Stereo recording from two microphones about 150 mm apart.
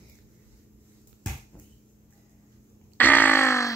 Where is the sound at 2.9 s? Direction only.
15° left (ahead or behind).